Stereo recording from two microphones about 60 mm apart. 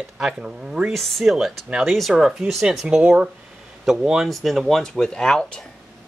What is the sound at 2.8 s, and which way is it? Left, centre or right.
Speech, centre.